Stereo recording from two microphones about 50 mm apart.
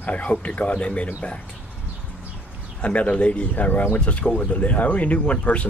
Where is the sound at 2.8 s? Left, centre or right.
Left.